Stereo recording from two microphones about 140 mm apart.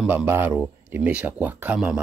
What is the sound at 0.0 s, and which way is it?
A man's voice, 10° right (ahead or behind).